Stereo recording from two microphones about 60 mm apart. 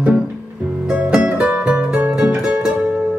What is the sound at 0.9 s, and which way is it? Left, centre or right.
Music, centre.